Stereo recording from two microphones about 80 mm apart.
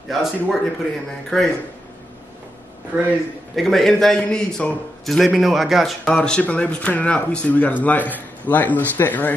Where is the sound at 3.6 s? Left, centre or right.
Centre.